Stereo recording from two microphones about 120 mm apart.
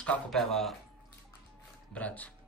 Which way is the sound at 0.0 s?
10° left (ahead or behind).